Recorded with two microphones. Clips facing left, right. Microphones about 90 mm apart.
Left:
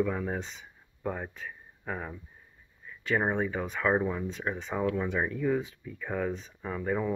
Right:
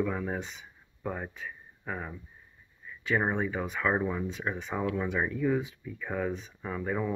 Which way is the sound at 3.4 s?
10° right (ahead or behind).